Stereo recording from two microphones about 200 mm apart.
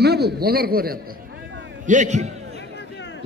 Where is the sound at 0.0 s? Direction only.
50° right (ahead or behind).